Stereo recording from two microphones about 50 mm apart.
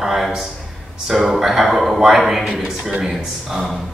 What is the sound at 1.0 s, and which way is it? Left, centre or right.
A man's voice, centre.